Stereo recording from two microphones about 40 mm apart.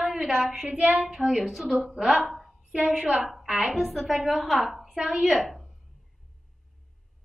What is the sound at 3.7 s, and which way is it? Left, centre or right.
A woman's voice, centre.